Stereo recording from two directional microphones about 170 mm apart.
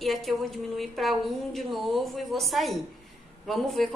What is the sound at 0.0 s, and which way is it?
A woman's voice, centre (ahead or behind).